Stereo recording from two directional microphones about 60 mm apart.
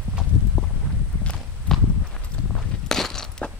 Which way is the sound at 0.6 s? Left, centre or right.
Centre.